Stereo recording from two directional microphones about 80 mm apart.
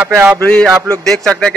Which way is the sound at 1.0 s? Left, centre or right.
Centre.